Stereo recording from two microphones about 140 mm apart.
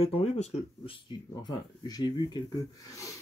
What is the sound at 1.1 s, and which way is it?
Speech, 30° left (ahead or behind).